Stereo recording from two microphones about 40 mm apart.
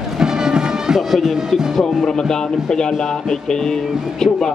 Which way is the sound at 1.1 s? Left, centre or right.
Centre.